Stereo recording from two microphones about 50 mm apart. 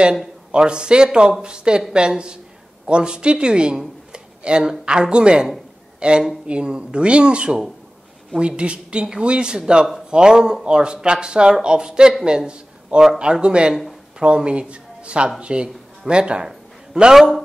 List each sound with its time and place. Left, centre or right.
0.5 s a man's voice: centre